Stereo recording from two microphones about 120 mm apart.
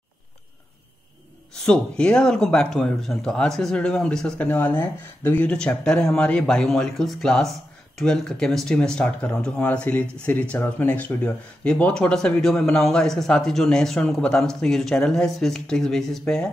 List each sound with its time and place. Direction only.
1.7 s speech: 10° left (ahead or behind)